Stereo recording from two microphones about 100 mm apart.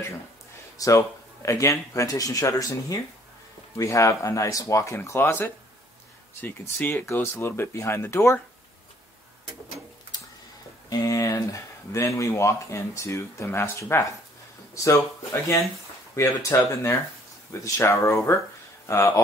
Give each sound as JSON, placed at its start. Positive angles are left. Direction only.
{"t": 0.7, "sound": "speech", "side_deg": 30}
{"t": 10.9, "sound": "speech", "side_deg": 35}
{"t": 16.2, "sound": "speech", "side_deg": 30}